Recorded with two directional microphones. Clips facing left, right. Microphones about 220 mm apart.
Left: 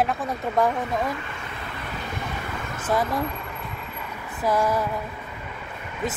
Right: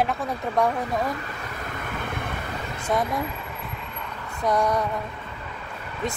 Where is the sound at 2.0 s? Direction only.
55° right (ahead or behind).